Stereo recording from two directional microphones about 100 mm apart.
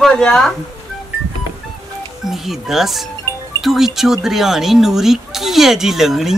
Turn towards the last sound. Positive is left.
turn(degrees=-5)  # may be behind; listen again after turning